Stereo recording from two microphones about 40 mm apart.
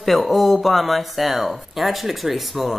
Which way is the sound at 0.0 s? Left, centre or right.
Centre.